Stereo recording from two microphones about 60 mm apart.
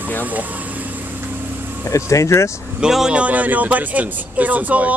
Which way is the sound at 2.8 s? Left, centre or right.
Centre.